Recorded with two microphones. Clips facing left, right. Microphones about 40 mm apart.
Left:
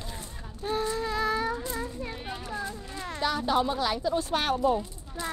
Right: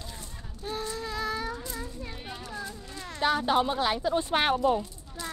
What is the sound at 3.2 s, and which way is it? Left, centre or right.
Speech, right.